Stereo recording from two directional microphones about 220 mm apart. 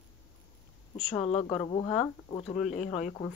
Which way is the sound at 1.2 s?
25° left (ahead or behind).